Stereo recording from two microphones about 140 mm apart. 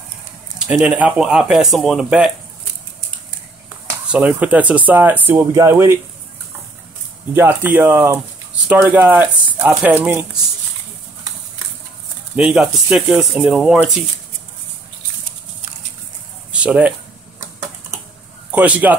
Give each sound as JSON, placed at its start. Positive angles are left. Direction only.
{"t": 0.6, "sound": "speech", "side_deg": -5}
{"t": 4.1, "sound": "speech", "side_deg": -10}
{"t": 7.3, "sound": "speech", "side_deg": -15}
{"t": 12.4, "sound": "speech", "side_deg": -5}
{"t": 16.5, "sound": "speech", "side_deg": -10}
{"t": 18.5, "sound": "speech", "side_deg": -10}